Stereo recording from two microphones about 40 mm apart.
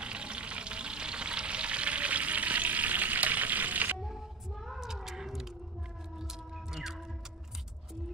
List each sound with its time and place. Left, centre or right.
0.0 s frying: right
4.0 s child singing: centre
4.8 s cat: centre
6.1 s whale vocalization: centre